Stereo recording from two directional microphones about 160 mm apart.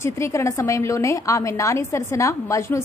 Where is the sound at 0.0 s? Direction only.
20° left (ahead or behind).